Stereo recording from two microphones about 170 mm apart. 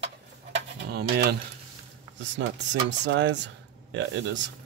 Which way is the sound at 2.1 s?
90° right.